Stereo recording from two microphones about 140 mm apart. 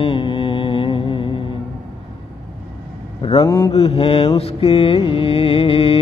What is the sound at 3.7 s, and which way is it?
Mantra, 45° left (ahead or behind).